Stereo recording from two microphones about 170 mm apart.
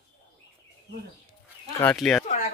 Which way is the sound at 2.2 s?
40° left (ahead or behind).